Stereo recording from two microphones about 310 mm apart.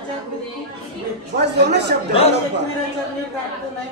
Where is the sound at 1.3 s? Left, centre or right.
Right.